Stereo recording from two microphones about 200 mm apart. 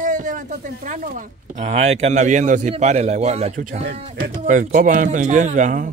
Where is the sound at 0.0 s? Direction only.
40° right (ahead or behind).